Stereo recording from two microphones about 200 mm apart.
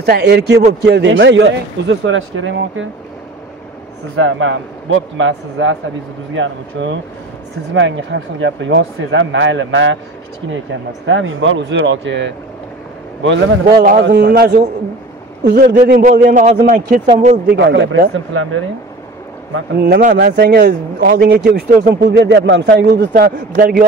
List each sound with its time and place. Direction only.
0.0 s speech: 55° right (ahead or behind); by 2.9 s 75° right (ahead or behind)
4.2 s a man's voice: 70° right (ahead or behind); by 14.5 s 50° right (ahead or behind)
15.5 s a man's voice: 40° right (ahead or behind)
17.5 s speech: 60° right (ahead or behind); by 18.6 s 80° right
19.5 s a man's voice: 50° right (ahead or behind)